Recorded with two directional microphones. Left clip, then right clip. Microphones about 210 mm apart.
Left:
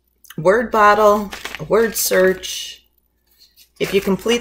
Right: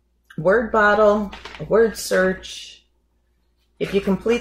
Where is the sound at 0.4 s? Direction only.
30° left (ahead or behind).